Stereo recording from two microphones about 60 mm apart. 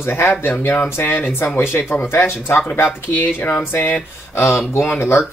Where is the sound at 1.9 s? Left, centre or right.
Left.